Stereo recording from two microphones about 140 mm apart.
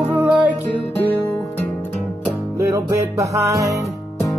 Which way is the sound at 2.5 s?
20° right (ahead or behind).